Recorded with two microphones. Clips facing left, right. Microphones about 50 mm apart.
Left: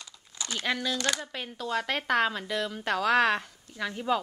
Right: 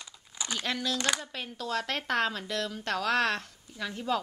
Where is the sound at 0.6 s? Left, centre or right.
Centre.